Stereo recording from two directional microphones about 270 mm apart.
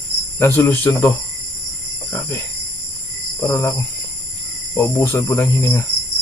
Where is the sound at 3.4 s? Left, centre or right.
Centre.